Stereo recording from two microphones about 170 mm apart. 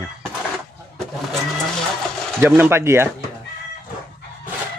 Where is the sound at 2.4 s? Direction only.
10° right (ahead or behind).